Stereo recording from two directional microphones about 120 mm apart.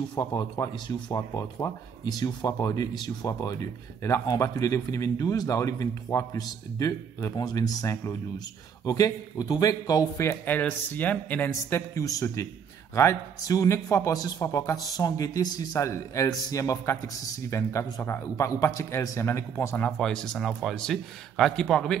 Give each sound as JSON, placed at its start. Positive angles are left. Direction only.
{"t": 0.1, "sound": "speech", "side_deg": 35}
{"t": 1.3, "sound": "speech", "side_deg": 25}
{"t": 11.5, "sound": "speech", "side_deg": 25}
{"t": 20.0, "sound": "a man's voice", "side_deg": 5}